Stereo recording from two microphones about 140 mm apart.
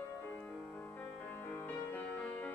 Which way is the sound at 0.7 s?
15° left (ahead or behind).